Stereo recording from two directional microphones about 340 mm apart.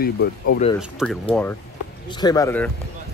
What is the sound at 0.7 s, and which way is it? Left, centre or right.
Speech, centre.